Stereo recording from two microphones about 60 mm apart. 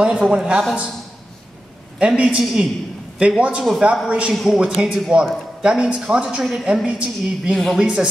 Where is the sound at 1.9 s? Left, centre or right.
Centre.